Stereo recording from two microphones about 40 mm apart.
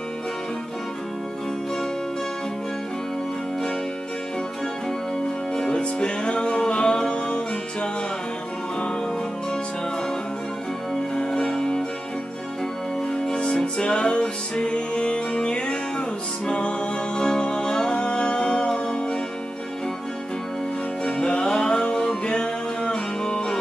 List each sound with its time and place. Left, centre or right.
5.6 s music: left
11.1 s music: centre
13.3 s music: left
21.0 s music: left